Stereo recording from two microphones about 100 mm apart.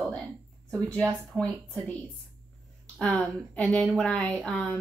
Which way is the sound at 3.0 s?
5° left (ahead or behind).